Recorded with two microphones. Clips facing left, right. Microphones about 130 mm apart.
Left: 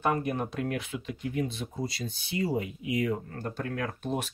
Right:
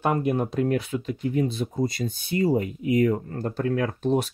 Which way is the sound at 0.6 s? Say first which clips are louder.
Right 8 dB; 35° right (ahead or behind).